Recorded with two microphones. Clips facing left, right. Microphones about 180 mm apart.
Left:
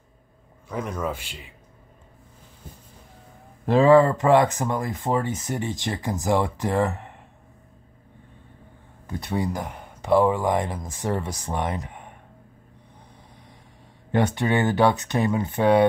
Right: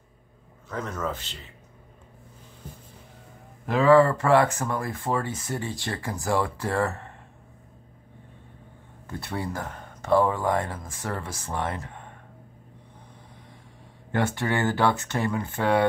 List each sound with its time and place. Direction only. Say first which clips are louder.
0.7 s speech: left 2 dB; 10° left (ahead or behind)
3.6 s speech: left 2 dB; 25° left (ahead or behind)
9.0 s speech: left 5 dB; 15° left (ahead or behind)
14.1 s speech: left 4 dB; 20° left (ahead or behind)